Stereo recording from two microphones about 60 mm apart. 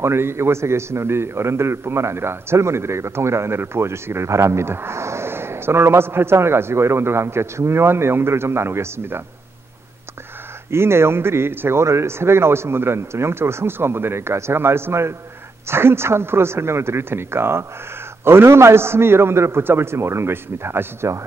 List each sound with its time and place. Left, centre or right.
0.0 s a man's voice: right
10.7 s a man's voice: right
11.8 s a man's voice: right